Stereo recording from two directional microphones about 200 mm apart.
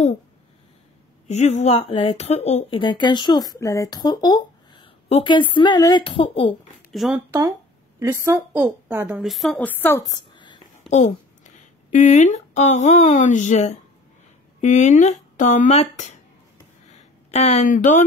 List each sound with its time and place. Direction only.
1.2 s speech: 35° left (ahead or behind)
6.9 s speech: centre (ahead or behind)
8.0 s a woman's voice: 15° right (ahead or behind); by 10.6 s 25° left (ahead or behind)
10.9 s speech: 35° left (ahead or behind)